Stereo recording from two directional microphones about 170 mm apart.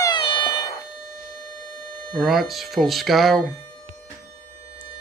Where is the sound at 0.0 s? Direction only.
30° left (ahead or behind).